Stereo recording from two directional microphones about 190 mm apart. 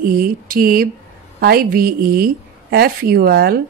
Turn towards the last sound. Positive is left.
turn(degrees=-50)  # may be behind; listen again after turning